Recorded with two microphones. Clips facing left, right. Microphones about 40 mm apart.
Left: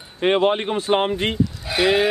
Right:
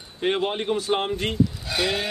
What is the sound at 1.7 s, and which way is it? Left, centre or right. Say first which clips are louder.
Speech: left 8 dB; centre.